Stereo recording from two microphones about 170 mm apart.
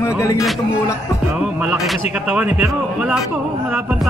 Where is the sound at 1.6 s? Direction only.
5° right (ahead or behind).